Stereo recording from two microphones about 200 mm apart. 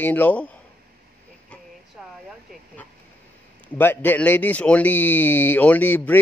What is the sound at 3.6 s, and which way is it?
Speech, 10° left (ahead or behind).